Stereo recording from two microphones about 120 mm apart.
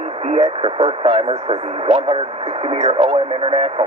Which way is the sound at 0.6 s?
50° right (ahead or behind).